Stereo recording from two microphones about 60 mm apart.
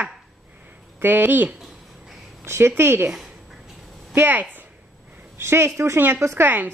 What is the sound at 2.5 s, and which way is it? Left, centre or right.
Speech, right.